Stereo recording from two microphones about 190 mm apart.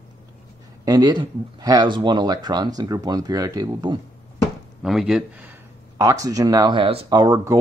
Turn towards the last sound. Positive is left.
turn(degrees=-15)  # may be behind; listen again after turning